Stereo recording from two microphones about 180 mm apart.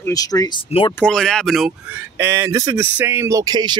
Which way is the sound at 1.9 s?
15° right (ahead or behind).